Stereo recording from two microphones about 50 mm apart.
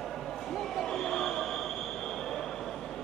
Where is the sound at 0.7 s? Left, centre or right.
Centre.